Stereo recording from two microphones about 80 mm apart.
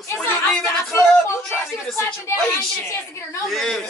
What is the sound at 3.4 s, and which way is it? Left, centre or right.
Speech, centre.